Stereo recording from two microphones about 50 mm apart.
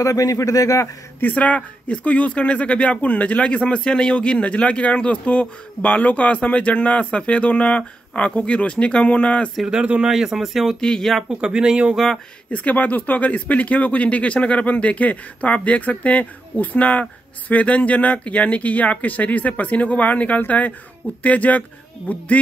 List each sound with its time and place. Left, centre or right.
1.2 s speech: left
9.7 s speech: right; by 10.8 s centre
10.8 s speech: centre
11.2 s speech: centre
12.4 s speech: left